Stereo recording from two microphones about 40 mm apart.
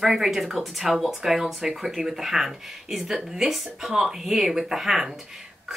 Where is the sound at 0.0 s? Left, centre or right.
Centre.